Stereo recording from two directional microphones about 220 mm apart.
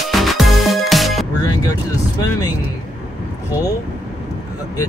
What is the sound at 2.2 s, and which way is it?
Music, 15° left (ahead or behind).